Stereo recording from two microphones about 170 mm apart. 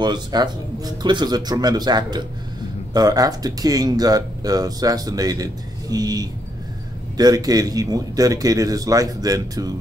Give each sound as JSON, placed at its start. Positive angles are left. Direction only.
{"t": 0.0, "sound": "speech", "side_deg": -25}